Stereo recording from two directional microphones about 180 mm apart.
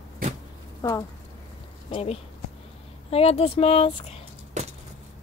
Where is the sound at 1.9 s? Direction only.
35° left (ahead or behind).